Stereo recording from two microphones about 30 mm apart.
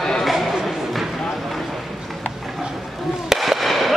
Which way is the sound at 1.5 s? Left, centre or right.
Centre.